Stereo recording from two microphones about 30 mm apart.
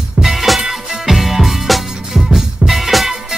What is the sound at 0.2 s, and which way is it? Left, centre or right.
Music, centre.